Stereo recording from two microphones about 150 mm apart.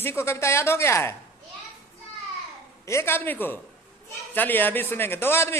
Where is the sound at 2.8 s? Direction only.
15° left (ahead or behind).